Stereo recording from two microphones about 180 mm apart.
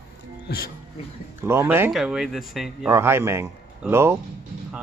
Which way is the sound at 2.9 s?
15° right (ahead or behind).